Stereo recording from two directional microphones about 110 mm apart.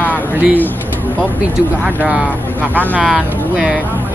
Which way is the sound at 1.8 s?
10° right (ahead or behind).